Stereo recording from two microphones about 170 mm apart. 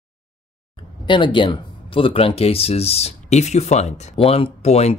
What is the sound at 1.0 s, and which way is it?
Speech, 30° left (ahead or behind).